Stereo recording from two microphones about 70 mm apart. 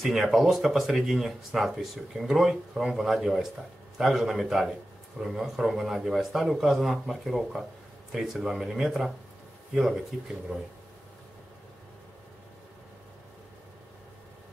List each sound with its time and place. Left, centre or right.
0.0 s speech: centre